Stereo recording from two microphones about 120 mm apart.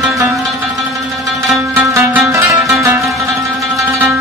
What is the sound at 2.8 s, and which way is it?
Zither, 25° right (ahead or behind).